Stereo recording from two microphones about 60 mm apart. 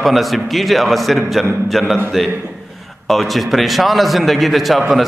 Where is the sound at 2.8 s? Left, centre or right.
Centre.